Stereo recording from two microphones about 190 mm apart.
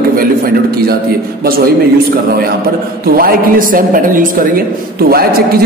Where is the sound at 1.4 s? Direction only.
50° right (ahead or behind).